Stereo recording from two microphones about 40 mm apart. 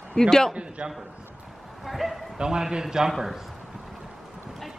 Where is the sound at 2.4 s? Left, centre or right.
Centre.